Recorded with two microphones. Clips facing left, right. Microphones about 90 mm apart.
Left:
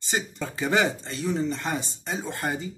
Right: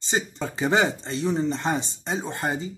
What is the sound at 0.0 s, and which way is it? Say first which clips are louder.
Speech: right 2 dB; 25° right (ahead or behind).